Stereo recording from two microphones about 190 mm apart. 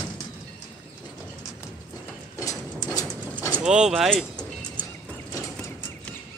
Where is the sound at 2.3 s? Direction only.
15° left (ahead or behind).